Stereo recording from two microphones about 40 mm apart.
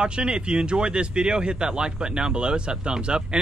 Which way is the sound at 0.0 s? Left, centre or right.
Right.